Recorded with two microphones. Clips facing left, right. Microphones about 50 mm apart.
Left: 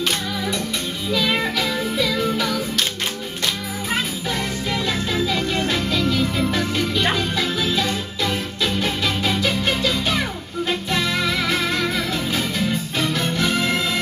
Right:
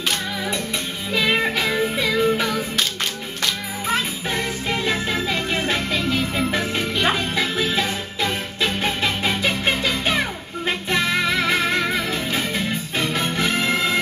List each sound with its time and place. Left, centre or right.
1.1 s music: right
4.6 s music: right